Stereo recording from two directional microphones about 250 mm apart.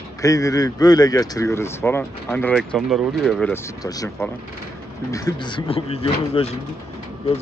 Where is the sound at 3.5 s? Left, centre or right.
Centre.